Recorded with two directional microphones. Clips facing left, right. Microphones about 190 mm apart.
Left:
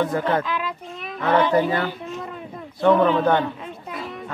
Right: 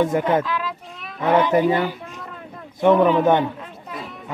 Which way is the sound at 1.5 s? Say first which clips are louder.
Right 2 dB; 15° right (ahead or behind).